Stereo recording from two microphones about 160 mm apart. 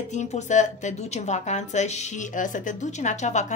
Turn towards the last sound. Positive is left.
turn(degrees=45)  # may be behind; listen again after turning